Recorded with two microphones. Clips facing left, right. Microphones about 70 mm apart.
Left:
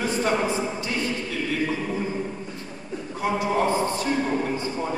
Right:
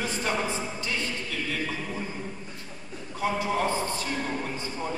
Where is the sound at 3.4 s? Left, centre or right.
Centre.